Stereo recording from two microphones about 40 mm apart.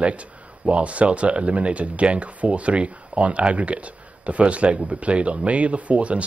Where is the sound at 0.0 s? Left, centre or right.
Right.